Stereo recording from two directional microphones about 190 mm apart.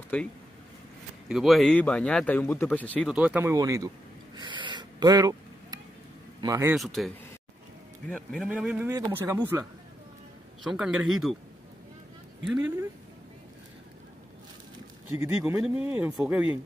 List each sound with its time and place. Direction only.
0.1 s speech: 10° left (ahead or behind)
1.3 s speech: centre (ahead or behind)
3.1 s speech: 5° right (ahead or behind)
4.4 s gasp: 25° right (ahead or behind)
6.4 s speech: 20° right (ahead or behind)
6.7 s speech: centre (ahead or behind)
8.1 s speech: 5° left (ahead or behind)
8.5 s speech: 5° right (ahead or behind)
10.6 s speech: centre (ahead or behind)
15.1 s speech: 10° right (ahead or behind)